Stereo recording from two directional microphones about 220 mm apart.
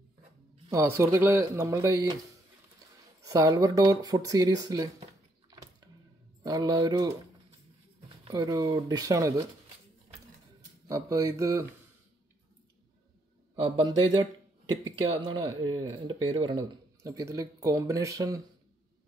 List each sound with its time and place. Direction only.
0.7 s speech: 15° right (ahead or behind)
3.2 s speech: 15° right (ahead or behind)
6.4 s speech: 15° right (ahead or behind)
8.3 s speech: 15° right (ahead or behind)
10.9 s speech: 15° right (ahead or behind)
13.6 s speech: 25° right (ahead or behind)